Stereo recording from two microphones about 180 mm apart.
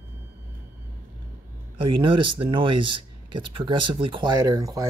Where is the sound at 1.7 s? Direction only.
30° right (ahead or behind).